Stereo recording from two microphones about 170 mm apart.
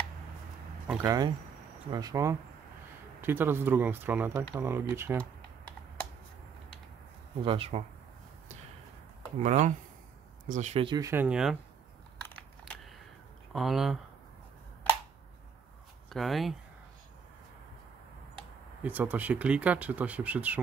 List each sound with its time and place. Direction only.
1.0 s speech: 20° right (ahead or behind)
7.4 s speech: 35° right (ahead or behind)
9.4 s speech: 45° right (ahead or behind)
11.0 s speech: 15° right (ahead or behind)
11.2 s speech: 5° right (ahead or behind)
13.5 s speech: centre (ahead or behind)
16.1 s speech: centre (ahead or behind)
18.8 s speech: 10° right (ahead or behind)